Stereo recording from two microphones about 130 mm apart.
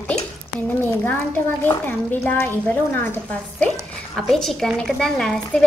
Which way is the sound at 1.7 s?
15° left (ahead or behind).